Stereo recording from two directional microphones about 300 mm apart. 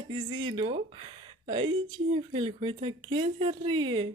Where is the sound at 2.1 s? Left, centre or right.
Centre.